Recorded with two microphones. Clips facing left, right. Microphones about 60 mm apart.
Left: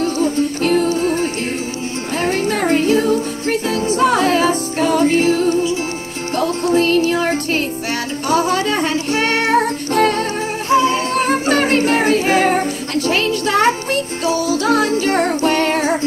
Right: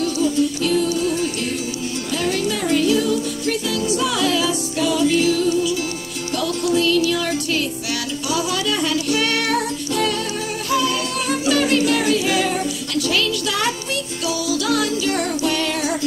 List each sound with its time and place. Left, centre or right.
0.0 s music: left